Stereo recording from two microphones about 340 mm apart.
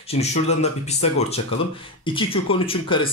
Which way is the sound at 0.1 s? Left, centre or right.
Centre.